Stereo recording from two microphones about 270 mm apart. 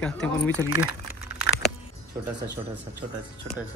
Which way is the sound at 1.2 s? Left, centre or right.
Centre.